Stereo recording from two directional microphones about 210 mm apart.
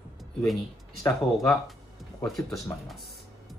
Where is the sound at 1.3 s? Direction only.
Centre (ahead or behind).